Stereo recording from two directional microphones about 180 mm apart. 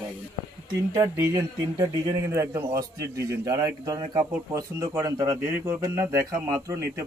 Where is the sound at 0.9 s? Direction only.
20° right (ahead or behind).